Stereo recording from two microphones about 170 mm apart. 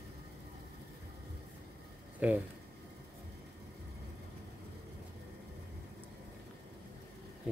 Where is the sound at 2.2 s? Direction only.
5° right (ahead or behind).